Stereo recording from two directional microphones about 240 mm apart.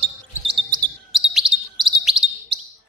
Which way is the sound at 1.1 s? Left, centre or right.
Centre.